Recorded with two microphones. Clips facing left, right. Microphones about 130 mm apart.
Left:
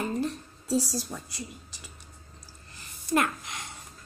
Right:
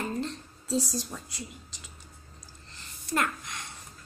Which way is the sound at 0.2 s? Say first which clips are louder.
Left 3 dB; 5° left (ahead or behind).